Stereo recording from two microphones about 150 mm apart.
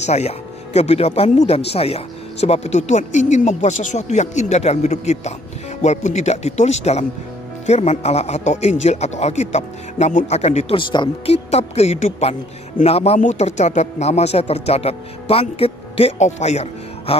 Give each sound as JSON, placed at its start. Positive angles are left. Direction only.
{"t": 0.0, "sound": "speech", "side_deg": 45}
{"t": 11.5, "sound": "speech", "side_deg": 45}